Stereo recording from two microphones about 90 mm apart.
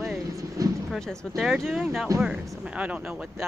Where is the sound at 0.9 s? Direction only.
5° left (ahead or behind).